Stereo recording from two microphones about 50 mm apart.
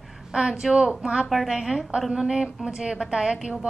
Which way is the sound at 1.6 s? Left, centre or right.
Centre.